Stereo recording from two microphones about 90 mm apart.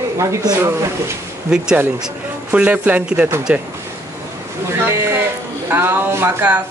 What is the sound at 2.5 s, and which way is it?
Speech, 15° right (ahead or behind).